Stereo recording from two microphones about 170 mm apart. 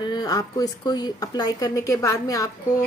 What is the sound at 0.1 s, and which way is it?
A woman's voice, 20° left (ahead or behind).